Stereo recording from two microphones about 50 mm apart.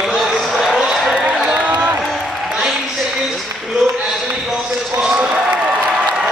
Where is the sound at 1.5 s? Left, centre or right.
Right.